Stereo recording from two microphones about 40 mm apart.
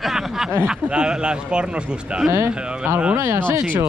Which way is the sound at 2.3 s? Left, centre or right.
Right.